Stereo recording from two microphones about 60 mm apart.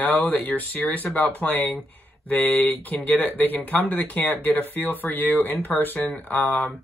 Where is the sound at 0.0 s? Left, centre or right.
Left.